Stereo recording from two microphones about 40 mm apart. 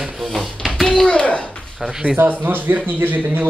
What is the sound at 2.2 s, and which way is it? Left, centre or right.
Speech, right.